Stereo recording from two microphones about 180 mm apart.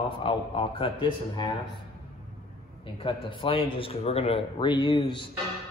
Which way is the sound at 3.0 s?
30° left (ahead or behind).